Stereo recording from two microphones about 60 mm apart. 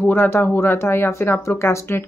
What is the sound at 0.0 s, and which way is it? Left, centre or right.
Speech, left.